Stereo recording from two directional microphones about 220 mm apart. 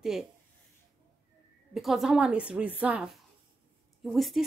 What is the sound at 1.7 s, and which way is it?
A woman's voice, centre (ahead or behind).